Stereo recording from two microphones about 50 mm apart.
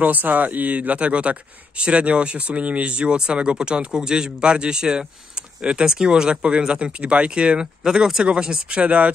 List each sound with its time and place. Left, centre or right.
0.0 s speech: right